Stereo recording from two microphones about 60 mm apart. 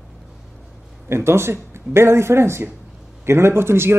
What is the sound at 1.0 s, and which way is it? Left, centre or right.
Speech, right.